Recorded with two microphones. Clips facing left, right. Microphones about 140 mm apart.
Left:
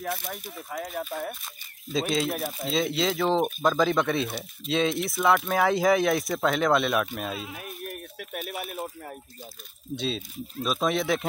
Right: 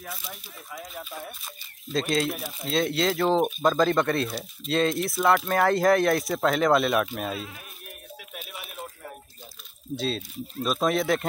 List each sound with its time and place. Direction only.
0.2 s speech: 50° left (ahead or behind)
1.9 s speech: centre (ahead or behind)
7.8 s a sound: 55° left (ahead or behind)
9.9 s speech: centre (ahead or behind)